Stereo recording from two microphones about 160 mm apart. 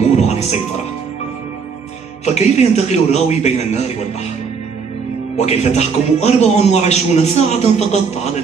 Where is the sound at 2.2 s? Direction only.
45° left (ahead or behind).